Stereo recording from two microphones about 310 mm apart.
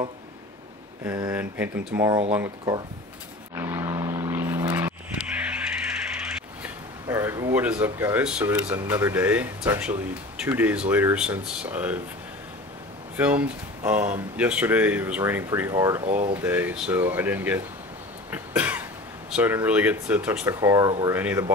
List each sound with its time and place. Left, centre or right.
1.0 s speech: centre
3.5 s vehicle: centre
13.1 s speech: centre
16.1 s speech: right
16.3 s speech: centre
18.3 s cough: centre
19.3 s speech: centre